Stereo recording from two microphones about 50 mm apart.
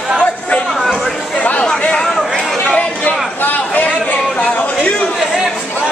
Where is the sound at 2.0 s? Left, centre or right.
Centre.